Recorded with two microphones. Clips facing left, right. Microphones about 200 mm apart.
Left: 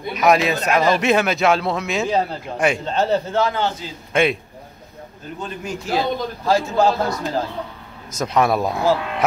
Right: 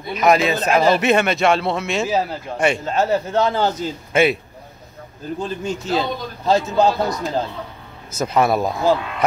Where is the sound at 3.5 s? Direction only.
40° right (ahead or behind).